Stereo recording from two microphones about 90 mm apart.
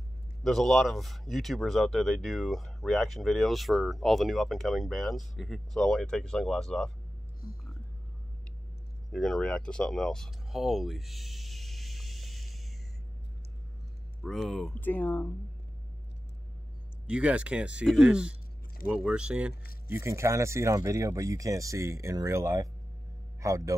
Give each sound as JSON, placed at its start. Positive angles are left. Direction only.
{"t": 0.4, "sound": "speech", "side_deg": 0}
{"t": 9.1, "sound": "a sound", "side_deg": 5}
{"t": 14.2, "sound": "speech", "side_deg": 0}
{"t": 14.7, "sound": "speech", "side_deg": 20}
{"t": 17.0, "sound": "speech", "side_deg": -10}
{"t": 19.9, "sound": "speech", "side_deg": -30}